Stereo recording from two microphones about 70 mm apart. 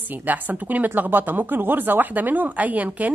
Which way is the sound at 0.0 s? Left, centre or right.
Right.